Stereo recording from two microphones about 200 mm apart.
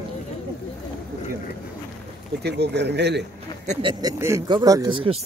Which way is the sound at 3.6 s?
35° right (ahead or behind).